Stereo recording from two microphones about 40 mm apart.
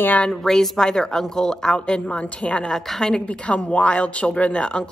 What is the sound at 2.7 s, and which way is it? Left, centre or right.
Speech, centre.